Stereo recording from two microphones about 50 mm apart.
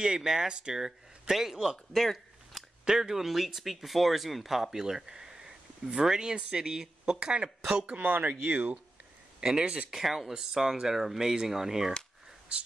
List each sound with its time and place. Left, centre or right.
0.0 s speech: centre
2.0 s a sound: centre
2.8 s speech: centre
8.1 s speech: right
9.4 s speech: centre
9.8 s speech: centre